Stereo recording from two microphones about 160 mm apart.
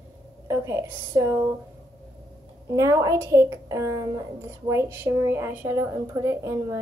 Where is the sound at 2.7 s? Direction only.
20° right (ahead or behind).